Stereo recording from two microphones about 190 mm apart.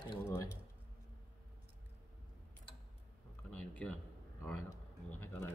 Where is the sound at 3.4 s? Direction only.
5° left (ahead or behind).